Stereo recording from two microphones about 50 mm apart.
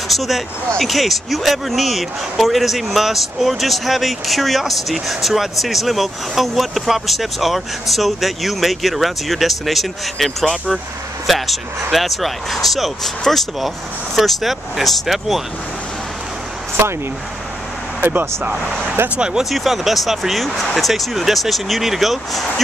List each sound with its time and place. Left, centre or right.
0.1 s speech: centre
16.8 s speech: right
19.0 s speech: centre
19.5 s speech: centre